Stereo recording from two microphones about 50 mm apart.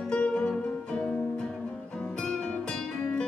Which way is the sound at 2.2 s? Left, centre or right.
Centre.